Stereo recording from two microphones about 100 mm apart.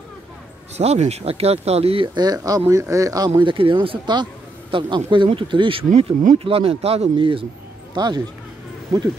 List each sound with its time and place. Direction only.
0.7 s speech: 90° right
2.1 s speech: 40° right (ahead or behind)
3.3 s speech: 60° right (ahead or behind)
7.9 s speech: 50° right (ahead or behind)